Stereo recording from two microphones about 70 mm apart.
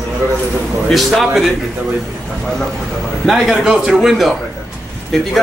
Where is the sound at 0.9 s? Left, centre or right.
Centre.